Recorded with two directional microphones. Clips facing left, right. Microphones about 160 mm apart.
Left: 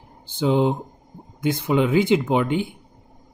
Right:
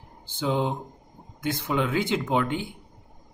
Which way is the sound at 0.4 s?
15° left (ahead or behind).